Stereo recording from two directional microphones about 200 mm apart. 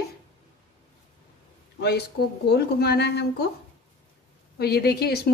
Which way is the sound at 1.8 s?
55° left (ahead or behind).